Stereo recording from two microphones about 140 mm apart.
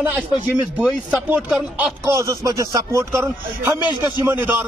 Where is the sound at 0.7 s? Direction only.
10° right (ahead or behind).